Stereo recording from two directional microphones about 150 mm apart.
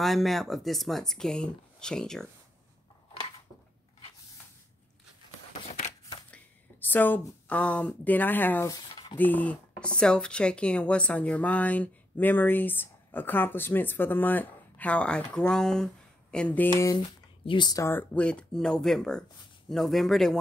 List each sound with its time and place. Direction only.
0.0 s speech: centre (ahead or behind)
6.3 s speech: 10° left (ahead or behind)
17.5 s speech: 30° left (ahead or behind); by 20.3 s centre (ahead or behind)